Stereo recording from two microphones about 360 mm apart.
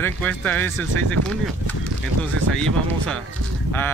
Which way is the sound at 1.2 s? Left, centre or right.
Right.